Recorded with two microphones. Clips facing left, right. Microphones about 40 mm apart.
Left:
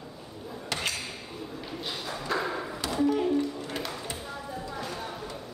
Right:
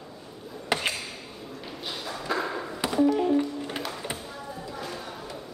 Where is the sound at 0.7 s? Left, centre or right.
Right.